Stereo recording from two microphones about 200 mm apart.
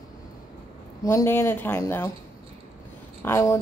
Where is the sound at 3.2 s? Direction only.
15° left (ahead or behind).